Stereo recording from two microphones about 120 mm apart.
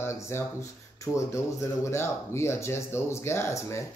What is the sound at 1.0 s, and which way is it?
Speech, 25° left (ahead or behind).